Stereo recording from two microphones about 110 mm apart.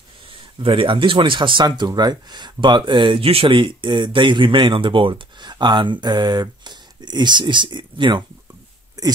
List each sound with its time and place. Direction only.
0.6 s speech: 50° right (ahead or behind)
9.0 s speech: 30° right (ahead or behind)